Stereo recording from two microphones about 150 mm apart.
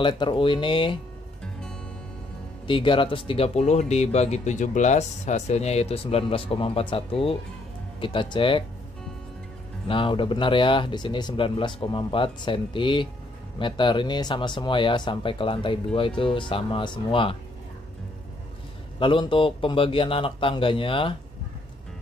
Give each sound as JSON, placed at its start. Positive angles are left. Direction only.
{"t": 0.0, "sound": "speech", "side_deg": 35}
{"t": 2.6, "sound": "speech", "side_deg": 35}
{"t": 9.8, "sound": "speech", "side_deg": 35}
{"t": 18.9, "sound": "speech", "side_deg": 35}